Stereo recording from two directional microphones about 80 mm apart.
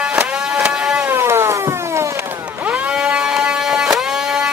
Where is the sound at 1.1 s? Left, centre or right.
Right.